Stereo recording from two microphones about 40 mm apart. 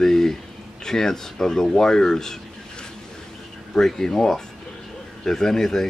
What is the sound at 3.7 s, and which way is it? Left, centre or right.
Speech, centre.